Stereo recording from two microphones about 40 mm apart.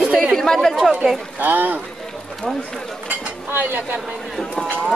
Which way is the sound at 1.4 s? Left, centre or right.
Right.